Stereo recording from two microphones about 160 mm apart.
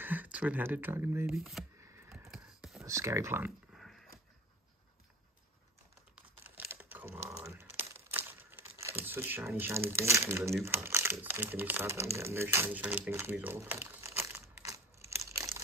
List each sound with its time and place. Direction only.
0.0 s speech: 10° right (ahead or behind)
1.3 s speech: centre (ahead or behind)
2.3 s a sound: 5° right (ahead or behind)
2.8 s speech: 20° right (ahead or behind)
3.7 s dog: centre (ahead or behind)
6.5 s typing: 10° right (ahead or behind)
7.5 s crumpling: 15° right (ahead or behind)
10.6 s speech: 15° right (ahead or behind)
13.1 s crumpling: 15° right (ahead or behind)